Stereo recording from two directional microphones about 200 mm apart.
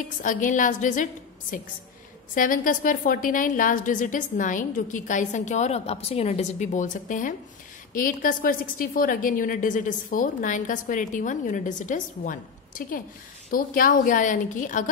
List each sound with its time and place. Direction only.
0.2 s a woman's voice: 40° left (ahead or behind)
2.3 s a woman's voice: 45° left (ahead or behind)